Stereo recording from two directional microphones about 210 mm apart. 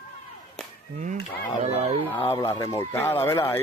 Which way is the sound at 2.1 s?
10° left (ahead or behind).